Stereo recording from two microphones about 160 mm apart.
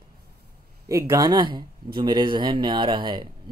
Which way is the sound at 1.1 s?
25° right (ahead or behind).